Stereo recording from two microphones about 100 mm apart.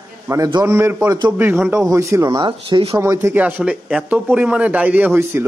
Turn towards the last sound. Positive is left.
turn(degrees=-20)  # may be behind; listen again after turning